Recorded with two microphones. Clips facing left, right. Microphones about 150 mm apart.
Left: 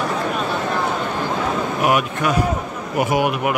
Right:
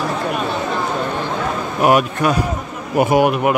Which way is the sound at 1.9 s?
35° right (ahead or behind).